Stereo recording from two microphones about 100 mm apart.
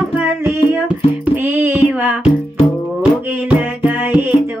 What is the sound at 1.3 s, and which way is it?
Child singing, 20° right (ahead or behind).